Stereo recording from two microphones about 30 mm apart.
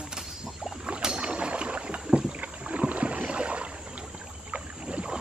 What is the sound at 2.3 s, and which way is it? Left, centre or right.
Rowboat, right.